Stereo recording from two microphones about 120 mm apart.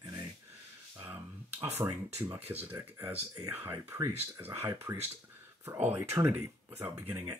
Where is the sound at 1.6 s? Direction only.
15° right (ahead or behind).